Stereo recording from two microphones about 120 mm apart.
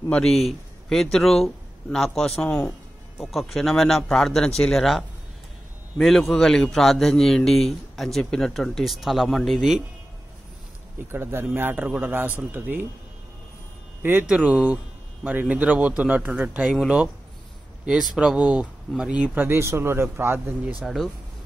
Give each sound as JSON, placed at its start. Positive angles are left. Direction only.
{"t": 0.1, "sound": "a man's voice", "side_deg": 0}
{"t": 11.1, "sound": "speech", "side_deg": -20}
{"t": 14.0, "sound": "speech", "side_deg": -15}
{"t": 20.8, "sound": "a man's voice", "side_deg": 0}